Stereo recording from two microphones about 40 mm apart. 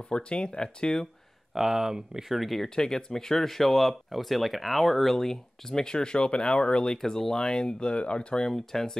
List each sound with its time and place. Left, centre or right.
0.1 s speech: left
1.5 s speech: centre
2.3 s speech: centre
2.7 s speech: centre
6.9 s speech: centre
7.4 s speech: left
8.5 s speech: centre